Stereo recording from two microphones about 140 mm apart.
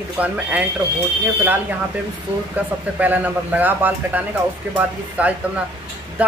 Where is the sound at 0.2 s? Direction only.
10° right (ahead or behind).